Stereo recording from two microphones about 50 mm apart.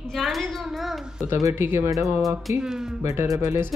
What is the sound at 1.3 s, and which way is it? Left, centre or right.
Speech, right.